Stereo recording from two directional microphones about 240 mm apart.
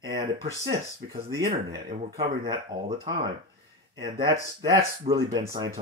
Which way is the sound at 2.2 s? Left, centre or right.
Centre.